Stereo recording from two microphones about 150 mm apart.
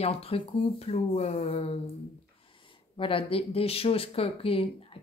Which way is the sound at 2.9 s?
35° left (ahead or behind).